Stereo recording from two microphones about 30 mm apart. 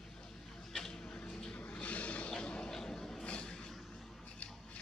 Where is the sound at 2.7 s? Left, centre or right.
Centre.